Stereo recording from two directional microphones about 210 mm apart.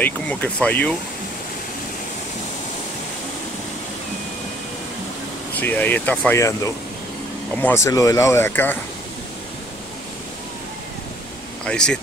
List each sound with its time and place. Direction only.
0.0 s speech: 10° left (ahead or behind)
5.6 s speech: 10° left (ahead or behind)
11.6 s speech: 5° left (ahead or behind)